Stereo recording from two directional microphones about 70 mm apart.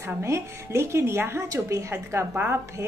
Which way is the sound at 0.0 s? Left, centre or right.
Right.